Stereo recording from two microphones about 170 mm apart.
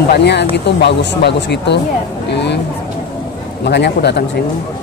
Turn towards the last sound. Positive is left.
turn(degrees=80)